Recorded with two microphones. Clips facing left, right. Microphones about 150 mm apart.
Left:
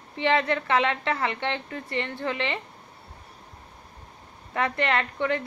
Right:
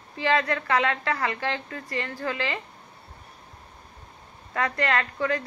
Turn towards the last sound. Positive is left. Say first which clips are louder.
# even
turn(degrees=20)  # may be behind; listen again after turning